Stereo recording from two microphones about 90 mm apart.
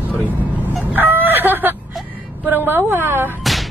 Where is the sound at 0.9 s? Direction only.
20° right (ahead or behind).